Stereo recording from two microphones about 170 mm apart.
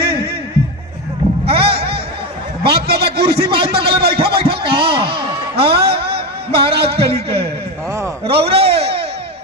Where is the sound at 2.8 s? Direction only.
65° right (ahead or behind).